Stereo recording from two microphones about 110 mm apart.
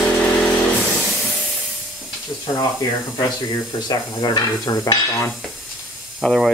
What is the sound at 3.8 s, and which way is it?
Speech, 40° left (ahead or behind).